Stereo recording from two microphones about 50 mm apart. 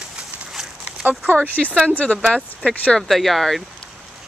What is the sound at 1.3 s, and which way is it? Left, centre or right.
Speech, right.